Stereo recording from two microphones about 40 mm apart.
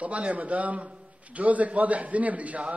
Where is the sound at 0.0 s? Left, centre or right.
Right.